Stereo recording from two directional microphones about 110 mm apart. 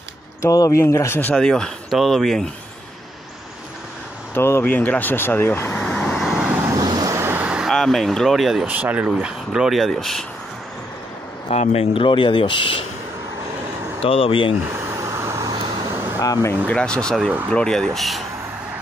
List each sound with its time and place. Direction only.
0.4 s speech: 30° left (ahead or behind)
1.3 s speech: 5° left (ahead or behind)
4.3 s speech: 20° left (ahead or behind)
6.2 s vehicle: 5° right (ahead or behind)
6.7 s vehicle: 35° right (ahead or behind)
7.2 s vehicle: 20° right (ahead or behind)
7.6 s speech: 5° left (ahead or behind)
11.4 s speech: 70° left (ahead or behind); by 12.8 s 50° left (ahead or behind)
14.0 s speech: 55° left (ahead or behind)
14.8 s vehicle: 25° right (ahead or behind)
15.4 s vehicle: 45° right (ahead or behind)
15.9 s air conditioning: 25° right (ahead or behind)
16.2 s speech: 30° left (ahead or behind)
16.6 s speech: 10° left (ahead or behind)